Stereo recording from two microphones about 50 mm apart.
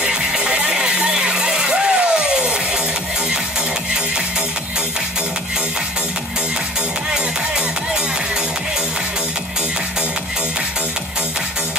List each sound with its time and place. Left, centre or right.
0.0 s music: centre
7.1 s music: centre